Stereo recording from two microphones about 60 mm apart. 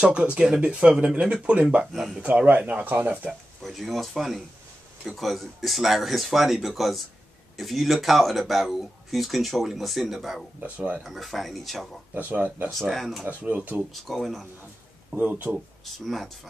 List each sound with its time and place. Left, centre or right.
0.0 s speech: centre
1.9 s speech: centre
2.4 s speech: right
3.3 s speech: centre
10.6 s speech: right
11.1 s speech: centre
12.1 s speech: right
12.7 s speech: centre
13.3 s speech: right
13.9 s speech: centre
15.0 s speech: right
15.8 s speech: centre